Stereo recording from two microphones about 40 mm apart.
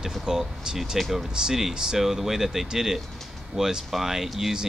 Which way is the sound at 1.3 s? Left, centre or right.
Centre.